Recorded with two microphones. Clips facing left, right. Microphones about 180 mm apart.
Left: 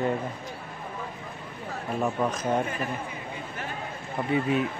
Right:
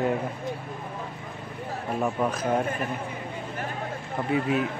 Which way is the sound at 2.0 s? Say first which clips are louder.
Right 1 dB; 5° right (ahead or behind).